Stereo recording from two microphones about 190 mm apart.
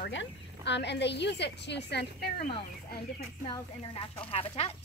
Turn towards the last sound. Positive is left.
turn(degrees=30)  # may be behind; listen again after turning